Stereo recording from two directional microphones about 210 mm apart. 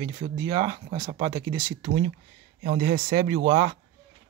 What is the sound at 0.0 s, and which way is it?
Speech, 20° right (ahead or behind).